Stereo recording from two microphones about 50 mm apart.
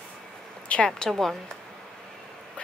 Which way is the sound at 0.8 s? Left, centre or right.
Centre.